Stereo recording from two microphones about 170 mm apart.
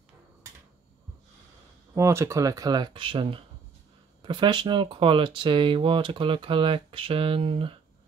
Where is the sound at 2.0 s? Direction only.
15° right (ahead or behind).